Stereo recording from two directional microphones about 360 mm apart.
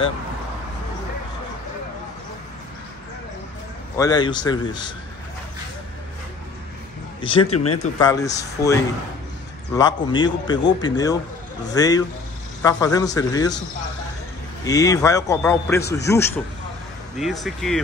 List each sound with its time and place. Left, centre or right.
4.0 s a man's voice: centre
7.2 s speech: centre
7.5 s speech: left
8.0 s a man's voice: centre
14.6 s a man's voice: centre